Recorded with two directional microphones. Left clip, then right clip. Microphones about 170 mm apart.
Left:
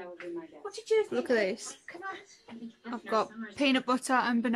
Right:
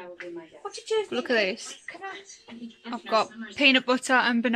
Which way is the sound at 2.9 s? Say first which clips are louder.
Right 5 dB; 5° right (ahead or behind).